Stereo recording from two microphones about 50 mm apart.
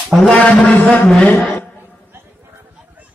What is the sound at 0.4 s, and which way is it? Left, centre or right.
Speech, left.